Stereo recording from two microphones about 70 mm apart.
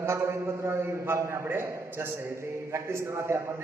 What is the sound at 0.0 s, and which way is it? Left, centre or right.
A man's voice, right.